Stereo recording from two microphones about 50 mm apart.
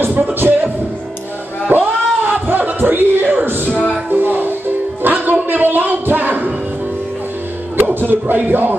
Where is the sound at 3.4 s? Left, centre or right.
Right.